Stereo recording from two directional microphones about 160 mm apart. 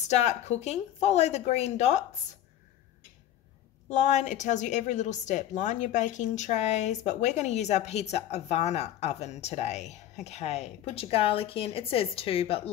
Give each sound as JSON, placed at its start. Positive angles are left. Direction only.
{"t": 0.1, "sound": "a woman's voice", "side_deg": 45}
{"t": 3.9, "sound": "a woman's voice", "side_deg": 50}